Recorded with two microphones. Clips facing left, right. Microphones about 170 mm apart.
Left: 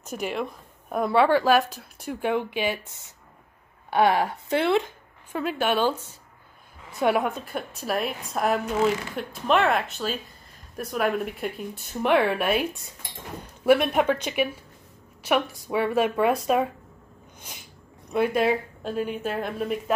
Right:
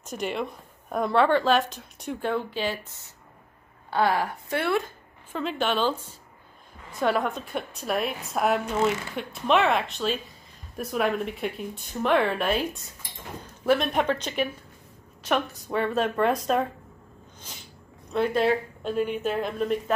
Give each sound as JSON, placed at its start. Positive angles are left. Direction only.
{"t": 0.0, "sound": "a woman's voice", "side_deg": 5}
{"t": 3.9, "sound": "a woman's voice", "side_deg": 20}
{"t": 5.3, "sound": "a woman's voice", "side_deg": 10}
{"t": 7.0, "sound": "a woman's voice", "side_deg": 10}
{"t": 13.7, "sound": "a woman's voice", "side_deg": 10}
{"t": 18.1, "sound": "a woman's voice", "side_deg": 10}